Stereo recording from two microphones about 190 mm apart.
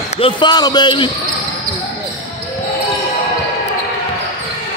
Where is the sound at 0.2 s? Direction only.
25° left (ahead or behind).